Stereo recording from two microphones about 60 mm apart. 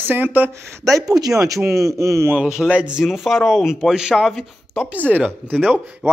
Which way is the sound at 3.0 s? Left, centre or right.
Centre.